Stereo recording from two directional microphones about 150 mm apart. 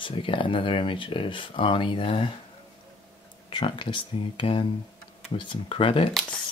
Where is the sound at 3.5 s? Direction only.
35° left (ahead or behind).